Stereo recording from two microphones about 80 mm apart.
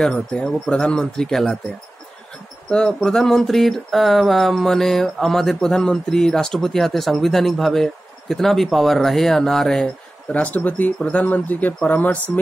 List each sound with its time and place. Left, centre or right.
0.0 s speech: centre
2.7 s a sound: centre
10.3 s speech: centre